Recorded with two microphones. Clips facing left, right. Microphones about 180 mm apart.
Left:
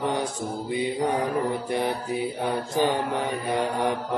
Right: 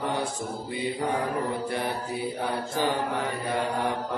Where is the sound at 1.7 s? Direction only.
20° left (ahead or behind).